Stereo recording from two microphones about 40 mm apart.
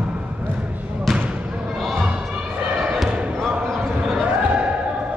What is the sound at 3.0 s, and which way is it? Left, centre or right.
Basketball bounce, right.